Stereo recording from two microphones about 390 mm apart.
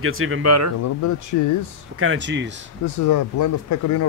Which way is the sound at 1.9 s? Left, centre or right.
Right.